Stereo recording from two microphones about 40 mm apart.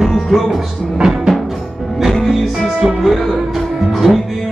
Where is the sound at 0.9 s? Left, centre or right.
Centre.